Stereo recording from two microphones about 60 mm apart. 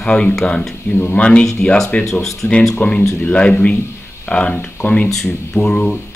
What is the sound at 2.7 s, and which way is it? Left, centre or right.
Speech, centre.